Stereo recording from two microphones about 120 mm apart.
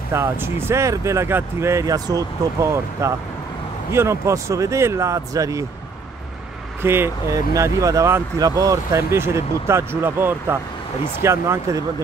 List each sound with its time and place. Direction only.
0.1 s speech: 20° right (ahead or behind)
6.8 s speech: 20° right (ahead or behind)